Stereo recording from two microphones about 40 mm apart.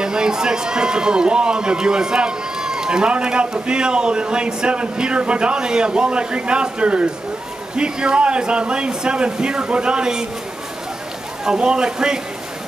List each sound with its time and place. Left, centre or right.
0.0 s a man's voice: centre
11.4 s speech: centre